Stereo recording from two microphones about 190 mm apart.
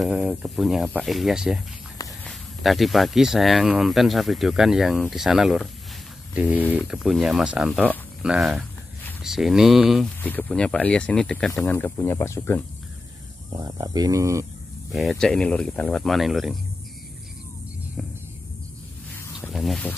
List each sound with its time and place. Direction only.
0.0 s speech: 5° right (ahead or behind); by 12.6 s 15° left (ahead or behind)
13.6 s speech: 20° right (ahead or behind)
14.9 s speech: centre (ahead or behind)
19.5 s speech: centre (ahead or behind)